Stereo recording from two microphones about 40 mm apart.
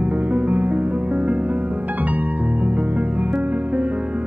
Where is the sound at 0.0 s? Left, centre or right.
Right.